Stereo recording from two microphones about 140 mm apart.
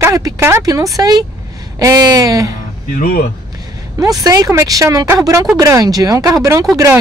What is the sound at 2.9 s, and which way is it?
Speech, 90° left.